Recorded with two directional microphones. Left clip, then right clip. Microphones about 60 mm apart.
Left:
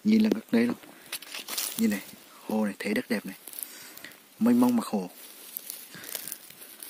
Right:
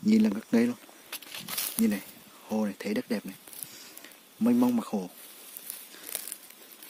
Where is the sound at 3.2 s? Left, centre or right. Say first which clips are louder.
Left 2 dB; centre.